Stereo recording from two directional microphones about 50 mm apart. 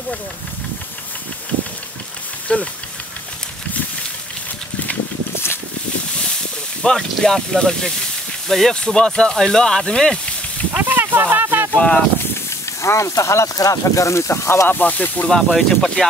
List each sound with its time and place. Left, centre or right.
2.4 s speech: left
6.8 s speech: centre
10.8 s speech: right
11.7 s speech: left
12.8 s speech: left
14.3 s speech: left
14.7 s speech: left
15.2 s speech: centre